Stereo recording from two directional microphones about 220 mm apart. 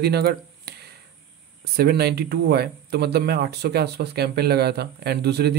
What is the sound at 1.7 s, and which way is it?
Speech, 45° right (ahead or behind).